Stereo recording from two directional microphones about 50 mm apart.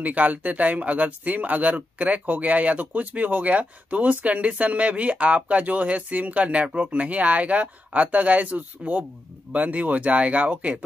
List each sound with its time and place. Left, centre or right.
0.0 s speech: right